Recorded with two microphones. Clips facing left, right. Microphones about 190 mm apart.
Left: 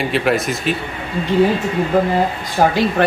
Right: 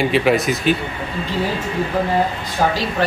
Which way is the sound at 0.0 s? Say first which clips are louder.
Right 2 dB; centre (ahead or behind).